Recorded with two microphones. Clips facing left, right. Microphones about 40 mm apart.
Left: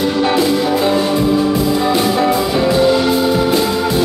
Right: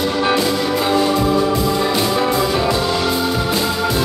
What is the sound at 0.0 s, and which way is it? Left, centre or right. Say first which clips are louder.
Music: left 3 dB; centre.